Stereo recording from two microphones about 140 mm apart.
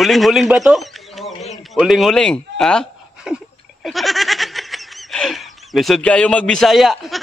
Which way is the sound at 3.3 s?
5° right (ahead or behind).